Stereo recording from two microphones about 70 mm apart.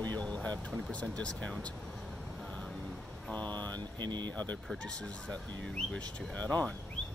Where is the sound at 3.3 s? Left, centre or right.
Left.